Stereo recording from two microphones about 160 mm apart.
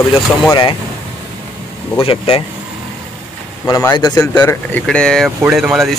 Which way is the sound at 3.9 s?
25° left (ahead or behind).